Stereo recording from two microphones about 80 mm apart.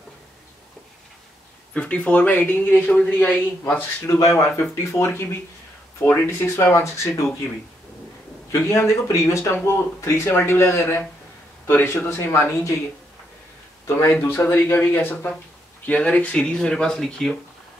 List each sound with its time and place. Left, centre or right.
1.7 s speech: centre
4.2 s speech: left
8.5 s a man's voice: left
13.8 s speech: left
14.1 s speech: left; by 17.4 s centre